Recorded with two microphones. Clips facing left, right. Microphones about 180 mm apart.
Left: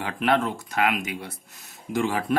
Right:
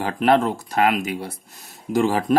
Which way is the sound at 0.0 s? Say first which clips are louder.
Right 5 dB; 35° right (ahead or behind).